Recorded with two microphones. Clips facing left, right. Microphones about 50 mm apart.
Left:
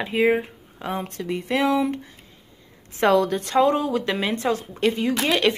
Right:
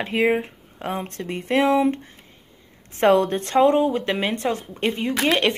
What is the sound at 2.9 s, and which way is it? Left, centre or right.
Speech, right.